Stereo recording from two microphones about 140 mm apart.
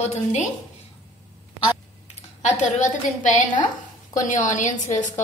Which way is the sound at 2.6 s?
65° left (ahead or behind).